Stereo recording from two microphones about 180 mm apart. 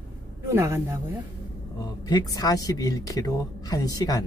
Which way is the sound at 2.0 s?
20° left (ahead or behind).